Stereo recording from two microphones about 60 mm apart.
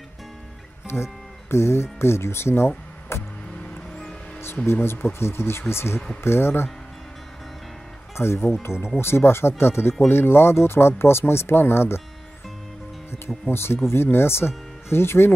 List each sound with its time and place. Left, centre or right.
0.9 s speech: centre
1.5 s speech: left
3.1 s vehicle: left
3.5 s music: centre
4.6 s speech: left
8.2 s speech: left
13.5 s speech: left